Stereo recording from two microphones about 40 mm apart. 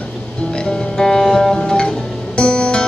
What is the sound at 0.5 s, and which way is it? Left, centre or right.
Music, left.